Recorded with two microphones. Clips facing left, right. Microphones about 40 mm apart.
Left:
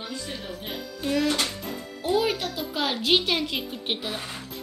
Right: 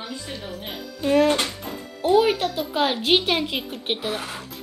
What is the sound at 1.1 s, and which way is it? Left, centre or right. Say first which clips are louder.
Speech: right 6 dB; right.